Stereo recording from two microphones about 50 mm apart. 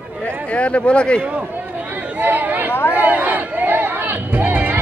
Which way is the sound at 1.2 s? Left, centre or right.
Right.